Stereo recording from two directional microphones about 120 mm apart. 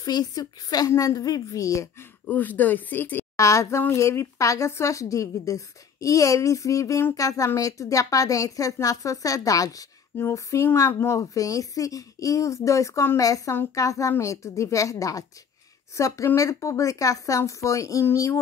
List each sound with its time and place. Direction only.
0.0 s a woman's voice: 35° left (ahead or behind)
2.2 s a woman's voice: 15° left (ahead or behind)